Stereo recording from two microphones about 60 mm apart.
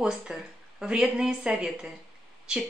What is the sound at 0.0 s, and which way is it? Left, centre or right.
Speech, centre.